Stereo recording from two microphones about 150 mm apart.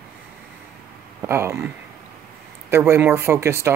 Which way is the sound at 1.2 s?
15° right (ahead or behind).